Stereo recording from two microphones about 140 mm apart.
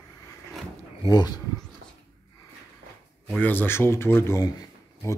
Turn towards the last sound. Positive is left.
turn(degrees=20)  # may be behind; listen again after turning